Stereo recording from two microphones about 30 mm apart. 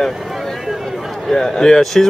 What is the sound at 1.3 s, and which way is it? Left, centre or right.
Speech, centre.